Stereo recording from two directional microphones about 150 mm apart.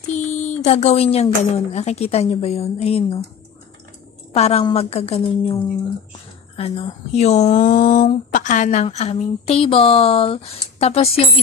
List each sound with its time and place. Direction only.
0.1 s a sound: 50° left (ahead or behind)
0.7 s a woman's voice: 45° left (ahead or behind)
4.3 s a woman's voice: 40° left (ahead or behind)